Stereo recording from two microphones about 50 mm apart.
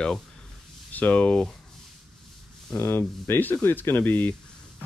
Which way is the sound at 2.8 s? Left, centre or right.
Left.